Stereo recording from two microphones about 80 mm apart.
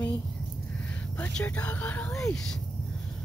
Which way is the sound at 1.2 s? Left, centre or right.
Left.